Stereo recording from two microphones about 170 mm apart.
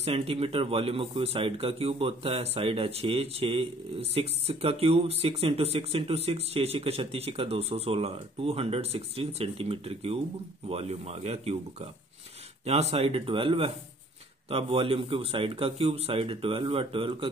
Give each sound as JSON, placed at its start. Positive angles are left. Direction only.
{"t": 0.0, "sound": "speech", "side_deg": -35}
{"t": 12.9, "sound": "speech", "side_deg": -35}